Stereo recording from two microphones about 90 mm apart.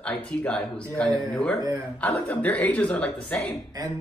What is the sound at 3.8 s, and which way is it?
Speech, 45° right (ahead or behind).